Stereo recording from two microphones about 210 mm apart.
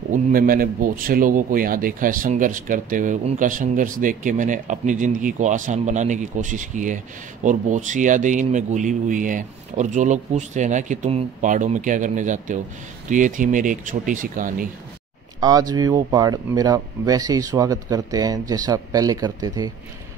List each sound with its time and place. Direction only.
0.1 s a man's voice: 40° right (ahead or behind)
15.4 s speech: 20° right (ahead or behind)